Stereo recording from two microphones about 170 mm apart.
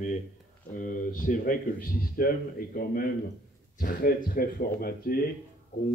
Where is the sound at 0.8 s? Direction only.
50° left (ahead or behind).